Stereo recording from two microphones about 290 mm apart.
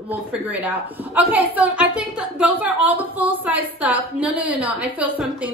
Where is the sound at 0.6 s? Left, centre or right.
Centre.